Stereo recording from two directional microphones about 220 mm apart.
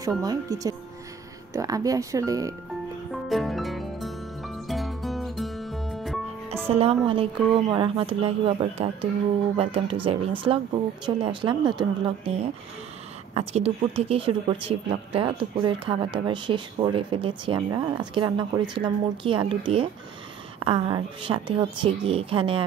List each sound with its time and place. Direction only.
0.2 s speech: 15° right (ahead or behind)
3.1 s music: centre (ahead or behind)
6.5 s speech: 25° right (ahead or behind)